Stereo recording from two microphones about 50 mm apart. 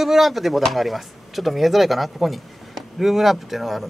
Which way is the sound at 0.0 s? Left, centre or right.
Centre.